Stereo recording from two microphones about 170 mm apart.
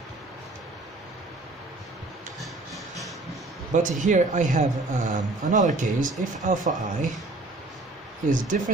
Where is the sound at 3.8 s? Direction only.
50° right (ahead or behind).